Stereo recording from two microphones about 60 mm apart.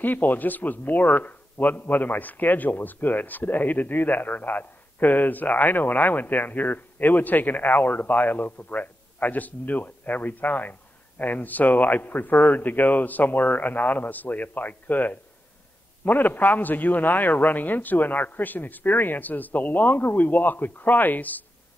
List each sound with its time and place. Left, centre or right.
0.0 s a man's voice: left